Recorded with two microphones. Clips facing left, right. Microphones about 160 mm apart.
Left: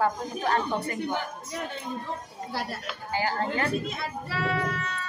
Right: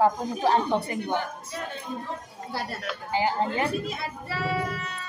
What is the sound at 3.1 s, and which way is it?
Speech, 20° right (ahead or behind).